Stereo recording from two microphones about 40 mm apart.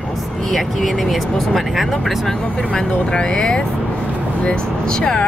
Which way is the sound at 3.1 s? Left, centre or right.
Left.